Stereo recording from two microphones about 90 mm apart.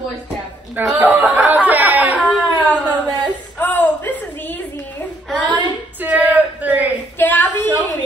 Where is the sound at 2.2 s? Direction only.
15° left (ahead or behind).